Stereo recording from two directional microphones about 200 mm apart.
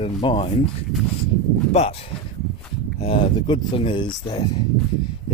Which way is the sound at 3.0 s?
25° left (ahead or behind).